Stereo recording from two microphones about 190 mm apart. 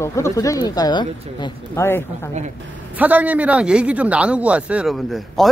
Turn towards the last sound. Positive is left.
turn(degrees=0)  # may be behind; listen again after turning